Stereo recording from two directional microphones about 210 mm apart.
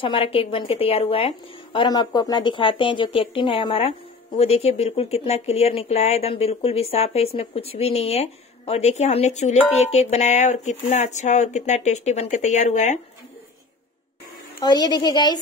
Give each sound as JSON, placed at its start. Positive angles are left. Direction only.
{"t": 0.0, "sound": "speech", "side_deg": 25}
{"t": 14.6, "sound": "speech", "side_deg": 20}